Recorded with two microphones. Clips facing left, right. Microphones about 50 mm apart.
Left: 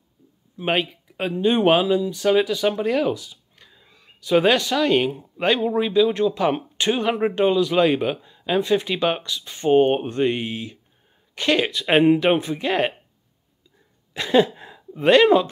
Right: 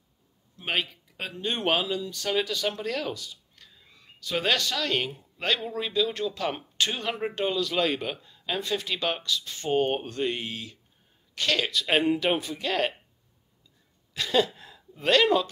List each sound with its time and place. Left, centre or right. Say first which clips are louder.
0.6 s speech: left 7 dB; centre
14.1 s speech: left 7 dB; left